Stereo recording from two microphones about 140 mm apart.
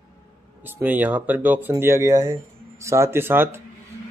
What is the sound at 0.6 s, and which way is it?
Speech, 15° right (ahead or behind).